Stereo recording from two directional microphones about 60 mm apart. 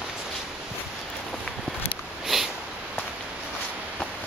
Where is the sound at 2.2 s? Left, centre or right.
Centre.